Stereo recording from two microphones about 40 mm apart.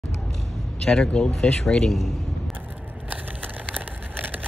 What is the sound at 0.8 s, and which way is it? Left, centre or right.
Speech, left.